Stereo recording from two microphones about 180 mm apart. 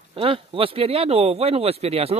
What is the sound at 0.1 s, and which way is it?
Speech, 30° right (ahead or behind).